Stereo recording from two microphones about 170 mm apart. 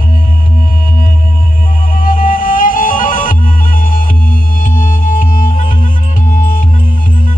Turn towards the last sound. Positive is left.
turn(degrees=50)  # may be behind; listen again after turning